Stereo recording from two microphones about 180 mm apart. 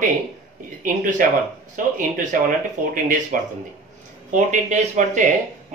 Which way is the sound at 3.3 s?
50° right (ahead or behind).